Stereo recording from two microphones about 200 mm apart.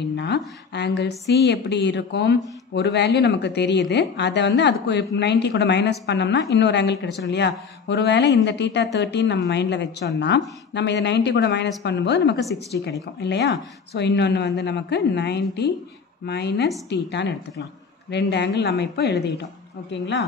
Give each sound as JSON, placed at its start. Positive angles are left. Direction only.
{"t": 0.1, "sound": "a woman's voice", "side_deg": 60}